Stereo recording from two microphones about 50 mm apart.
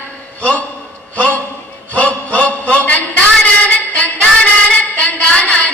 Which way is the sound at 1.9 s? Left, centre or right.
Left.